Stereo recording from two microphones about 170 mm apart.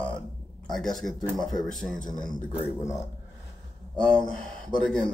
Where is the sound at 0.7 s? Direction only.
Centre (ahead or behind).